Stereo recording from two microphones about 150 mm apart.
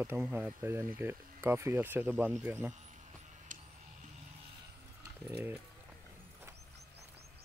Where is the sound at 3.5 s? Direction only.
60° right (ahead or behind).